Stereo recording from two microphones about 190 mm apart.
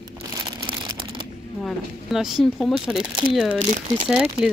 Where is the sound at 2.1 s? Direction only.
Centre (ahead or behind).